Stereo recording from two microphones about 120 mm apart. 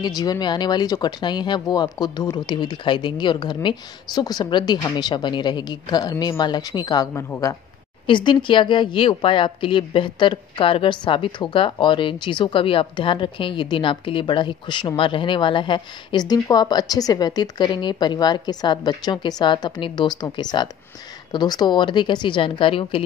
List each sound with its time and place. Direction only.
0.0 s speech: 35° left (ahead or behind)
7.2 s speech: 25° left (ahead or behind)
8.1 s speech: 40° left (ahead or behind)